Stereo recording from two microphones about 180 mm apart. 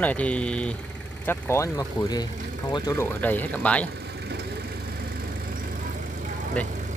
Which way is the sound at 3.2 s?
10° left (ahead or behind).